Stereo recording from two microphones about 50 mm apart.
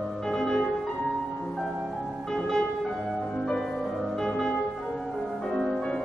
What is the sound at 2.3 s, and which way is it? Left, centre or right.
Music, centre.